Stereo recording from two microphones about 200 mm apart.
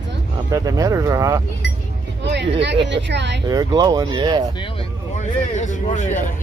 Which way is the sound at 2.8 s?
60° right (ahead or behind).